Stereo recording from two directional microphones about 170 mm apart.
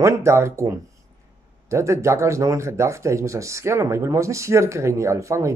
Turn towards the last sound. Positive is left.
turn(degrees=-15)  # may be behind; listen again after turning